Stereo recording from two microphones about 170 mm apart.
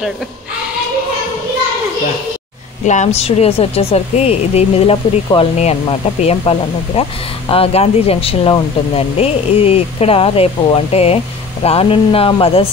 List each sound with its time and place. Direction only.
2.8 s speech: 45° left (ahead or behind)